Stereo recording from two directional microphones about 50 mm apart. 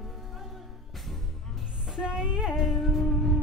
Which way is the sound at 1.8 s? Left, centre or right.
Centre.